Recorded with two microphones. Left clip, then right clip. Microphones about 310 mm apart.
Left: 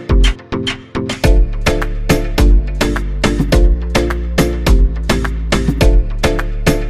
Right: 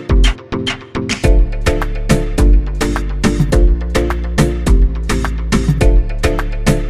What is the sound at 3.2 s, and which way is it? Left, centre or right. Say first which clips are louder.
Music: left 2 dB; centre.